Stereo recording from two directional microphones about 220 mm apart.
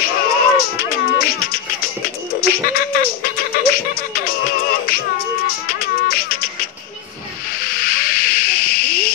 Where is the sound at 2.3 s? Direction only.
40° left (ahead or behind).